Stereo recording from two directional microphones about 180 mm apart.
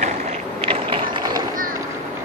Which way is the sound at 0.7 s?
30° right (ahead or behind).